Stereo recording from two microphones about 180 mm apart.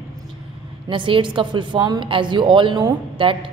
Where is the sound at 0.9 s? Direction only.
25° right (ahead or behind).